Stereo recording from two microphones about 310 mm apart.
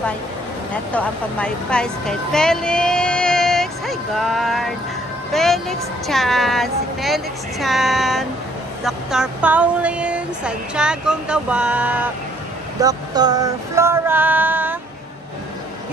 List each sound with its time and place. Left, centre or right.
0.9 s speech: centre
5.3 s a sound: centre
12.8 s female singing: centre